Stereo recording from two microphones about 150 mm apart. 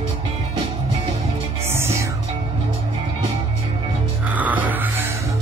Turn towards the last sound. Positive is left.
turn(degrees=-10)  # may be behind; listen again after turning